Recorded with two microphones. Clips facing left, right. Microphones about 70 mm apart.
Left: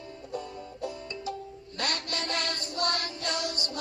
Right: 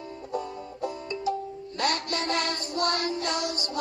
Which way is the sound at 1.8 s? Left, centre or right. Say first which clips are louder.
Right 5 dB; right.